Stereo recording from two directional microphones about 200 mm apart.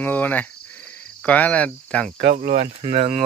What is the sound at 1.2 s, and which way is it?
Cricket, 5° left (ahead or behind).